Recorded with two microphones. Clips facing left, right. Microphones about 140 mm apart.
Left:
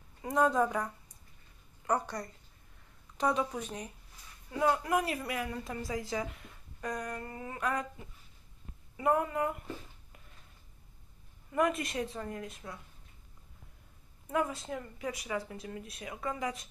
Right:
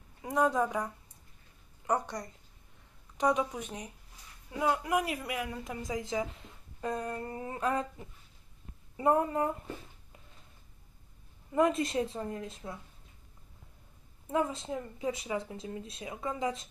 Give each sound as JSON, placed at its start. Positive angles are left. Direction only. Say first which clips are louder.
{"t": 0.2, "sound": "speech", "louder": "left 1 dB", "side_deg": -10}
{"t": 1.9, "sound": "speech", "louder": "right 1 dB", "side_deg": -20}
{"t": 8.9, "sound": "a woman's voice", "louder": "right 2 dB", "side_deg": -30}
{"t": 11.5, "sound": "speech", "louder": "right 3 dB", "side_deg": -25}
{"t": 14.3, "sound": "speech", "louder": "right 2 dB", "side_deg": -25}